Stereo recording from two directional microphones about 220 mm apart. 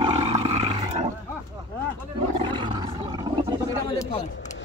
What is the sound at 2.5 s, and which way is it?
Roar, 20° right (ahead or behind).